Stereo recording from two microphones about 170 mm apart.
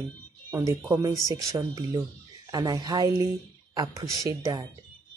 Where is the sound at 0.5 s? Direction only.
20° right (ahead or behind).